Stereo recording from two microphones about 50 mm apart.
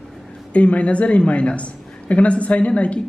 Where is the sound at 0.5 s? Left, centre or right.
Left.